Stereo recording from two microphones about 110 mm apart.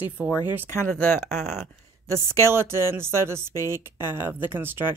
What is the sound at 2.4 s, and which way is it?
Speech, 25° right (ahead or behind).